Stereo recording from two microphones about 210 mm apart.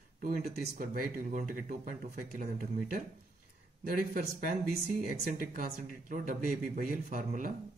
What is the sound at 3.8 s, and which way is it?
Speech, 45° right (ahead or behind).